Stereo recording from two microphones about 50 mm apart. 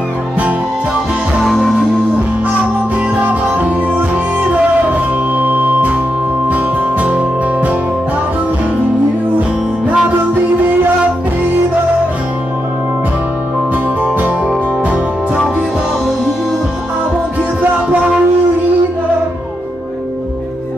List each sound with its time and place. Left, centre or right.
1.4 s music: centre
3.2 s music: right
10.0 s music: right